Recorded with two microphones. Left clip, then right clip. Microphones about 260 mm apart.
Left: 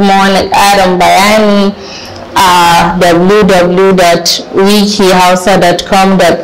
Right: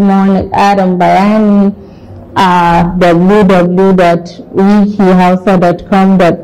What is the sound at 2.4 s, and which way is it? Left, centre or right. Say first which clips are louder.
Speech: left 3 dB; centre.